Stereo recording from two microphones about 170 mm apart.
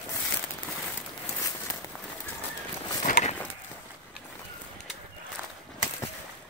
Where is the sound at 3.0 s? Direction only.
40° left (ahead or behind).